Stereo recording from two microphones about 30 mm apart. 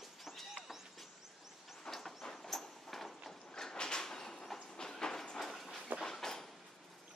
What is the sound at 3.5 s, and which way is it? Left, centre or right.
Sliding door, left.